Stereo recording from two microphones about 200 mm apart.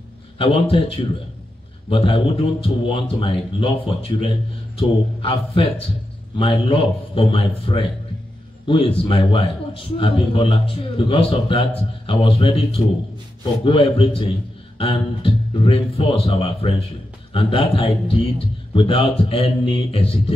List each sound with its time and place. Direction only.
0.4 s a man's voice: 25° left (ahead or behind)
4.7 s a man's voice: 25° left (ahead or behind)